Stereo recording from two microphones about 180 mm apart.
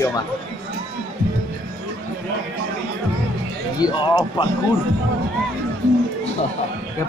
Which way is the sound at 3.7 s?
20° left (ahead or behind).